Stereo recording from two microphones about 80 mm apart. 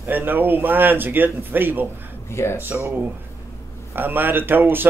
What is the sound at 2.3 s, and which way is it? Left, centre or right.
Speech, left.